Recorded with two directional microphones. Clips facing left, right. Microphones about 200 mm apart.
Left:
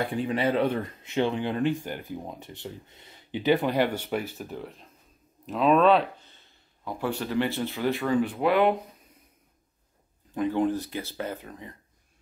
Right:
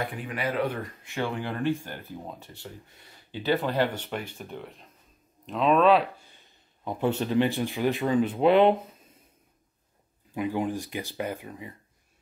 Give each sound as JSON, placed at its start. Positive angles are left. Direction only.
{"t": 0.0, "sound": "speech", "side_deg": 30}
{"t": 10.3, "sound": "speech", "side_deg": -10}